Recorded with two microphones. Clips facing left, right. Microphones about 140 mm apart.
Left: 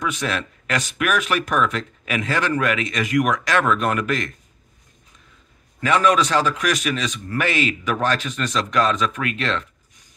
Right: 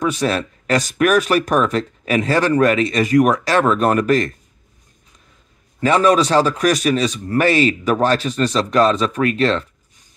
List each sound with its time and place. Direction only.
0.0 s speech: 35° right (ahead or behind)
5.8 s speech: 35° right (ahead or behind)